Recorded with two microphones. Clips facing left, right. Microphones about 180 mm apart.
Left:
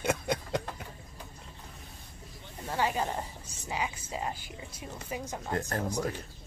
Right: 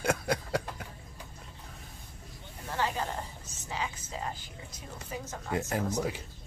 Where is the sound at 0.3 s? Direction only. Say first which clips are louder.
Right 1 dB; 5° right (ahead or behind).